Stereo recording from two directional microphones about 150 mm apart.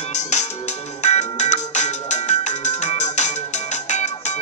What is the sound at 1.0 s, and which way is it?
Ringtone, 50° left (ahead or behind).